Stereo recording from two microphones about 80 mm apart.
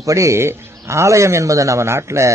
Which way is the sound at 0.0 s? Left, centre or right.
Right.